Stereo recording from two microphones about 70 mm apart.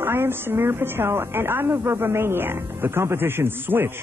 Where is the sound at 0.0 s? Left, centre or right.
Right.